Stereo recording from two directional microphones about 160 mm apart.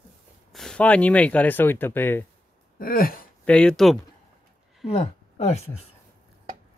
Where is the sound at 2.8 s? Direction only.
65° left (ahead or behind).